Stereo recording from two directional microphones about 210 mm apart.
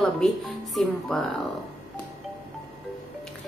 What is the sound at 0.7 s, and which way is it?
Speech, centre (ahead or behind).